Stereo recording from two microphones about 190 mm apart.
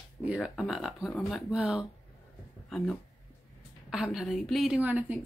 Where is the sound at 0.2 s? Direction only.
5° right (ahead or behind).